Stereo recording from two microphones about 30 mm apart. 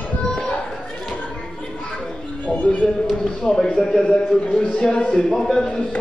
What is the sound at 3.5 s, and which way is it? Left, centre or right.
Speech, centre.